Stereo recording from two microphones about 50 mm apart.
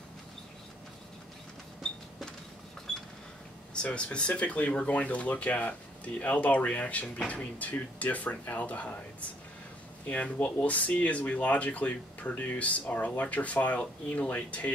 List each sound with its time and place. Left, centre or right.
2.9 s cash register: centre
3.7 s speech: left
10.0 s speech: left